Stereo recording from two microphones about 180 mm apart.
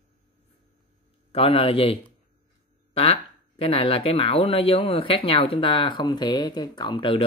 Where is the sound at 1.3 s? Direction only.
30° left (ahead or behind).